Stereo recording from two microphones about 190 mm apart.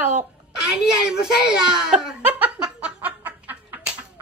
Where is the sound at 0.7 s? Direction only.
5° right (ahead or behind).